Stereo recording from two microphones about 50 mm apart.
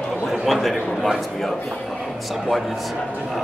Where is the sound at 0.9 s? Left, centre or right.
Centre.